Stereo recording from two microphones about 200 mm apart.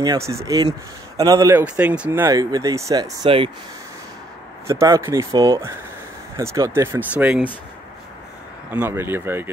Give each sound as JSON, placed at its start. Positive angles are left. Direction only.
{"t": 0.0, "sound": "speech", "side_deg": -15}
{"t": 4.6, "sound": "speech", "side_deg": -15}
{"t": 8.6, "sound": "speech", "side_deg": -10}